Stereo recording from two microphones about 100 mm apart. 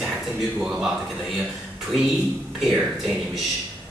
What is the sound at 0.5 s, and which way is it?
Speech, 5° right (ahead or behind).